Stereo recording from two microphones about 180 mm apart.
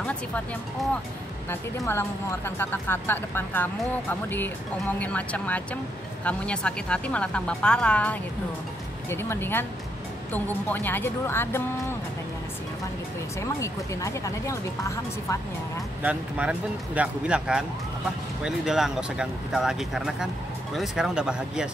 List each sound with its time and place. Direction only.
1.5 s a woman's voice: 15° left (ahead or behind)
4.9 s a woman's voice: 10° left (ahead or behind)
13.4 s a woman's voice: 15° left (ahead or behind)
16.0 s speech: 5° right (ahead or behind)